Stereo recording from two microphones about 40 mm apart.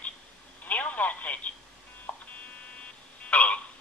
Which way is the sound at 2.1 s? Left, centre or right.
Left.